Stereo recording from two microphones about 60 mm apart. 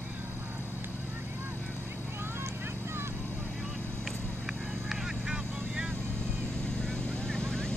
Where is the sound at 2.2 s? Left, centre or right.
Right.